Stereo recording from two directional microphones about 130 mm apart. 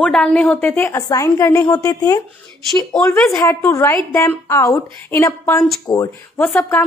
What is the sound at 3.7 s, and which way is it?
A woman's voice, 20° left (ahead or behind).